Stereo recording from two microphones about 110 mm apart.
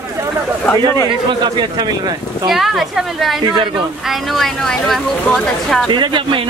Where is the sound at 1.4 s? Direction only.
40° right (ahead or behind).